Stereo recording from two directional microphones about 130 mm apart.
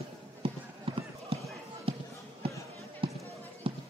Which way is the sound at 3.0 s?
45° right (ahead or behind).